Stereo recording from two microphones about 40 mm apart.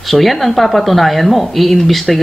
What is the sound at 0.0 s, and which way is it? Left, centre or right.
Speech, centre.